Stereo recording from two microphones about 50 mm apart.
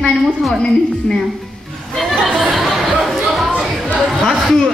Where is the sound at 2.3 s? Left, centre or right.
Centre.